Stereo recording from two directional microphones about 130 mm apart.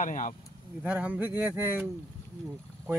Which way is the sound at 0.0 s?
75° left (ahead or behind).